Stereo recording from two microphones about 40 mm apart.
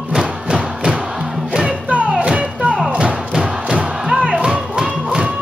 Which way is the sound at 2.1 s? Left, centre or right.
Right.